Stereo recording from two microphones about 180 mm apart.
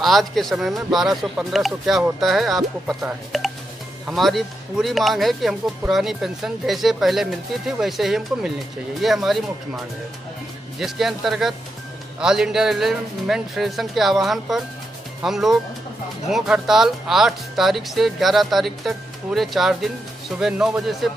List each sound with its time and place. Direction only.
0.0 s speech: centre (ahead or behind)
10.8 s speech: centre (ahead or behind)